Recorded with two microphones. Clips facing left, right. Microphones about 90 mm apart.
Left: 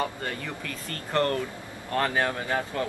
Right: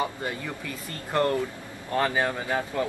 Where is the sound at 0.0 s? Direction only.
10° right (ahead or behind).